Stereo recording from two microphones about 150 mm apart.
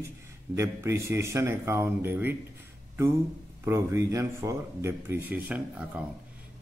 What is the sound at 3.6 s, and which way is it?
Speech, 20° right (ahead or behind).